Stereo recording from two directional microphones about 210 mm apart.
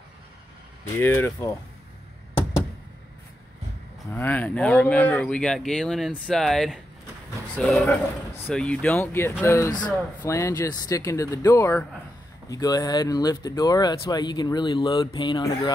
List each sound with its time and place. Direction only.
0.9 s speech: 10° left (ahead or behind)
4.1 s speech: 5° left (ahead or behind)